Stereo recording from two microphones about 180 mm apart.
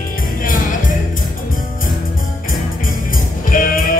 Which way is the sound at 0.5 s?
45° left (ahead or behind).